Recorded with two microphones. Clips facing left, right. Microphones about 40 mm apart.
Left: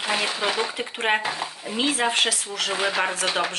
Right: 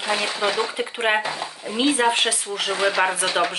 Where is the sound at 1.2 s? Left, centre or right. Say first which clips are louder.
Right 2 dB; centre.